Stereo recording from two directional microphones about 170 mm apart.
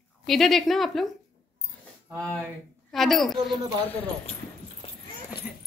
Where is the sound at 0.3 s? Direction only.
Centre (ahead or behind).